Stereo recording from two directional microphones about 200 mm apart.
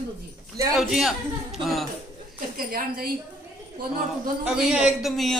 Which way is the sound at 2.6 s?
45° right (ahead or behind).